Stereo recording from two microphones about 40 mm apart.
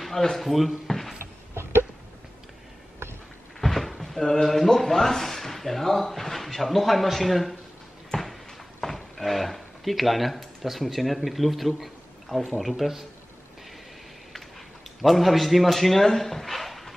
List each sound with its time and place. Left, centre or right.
0.0 s speech: centre
1.2 s a sound: right
3.6 s speech: centre
8.1 s a sound: centre
8.8 s speech: centre
15.0 s speech: centre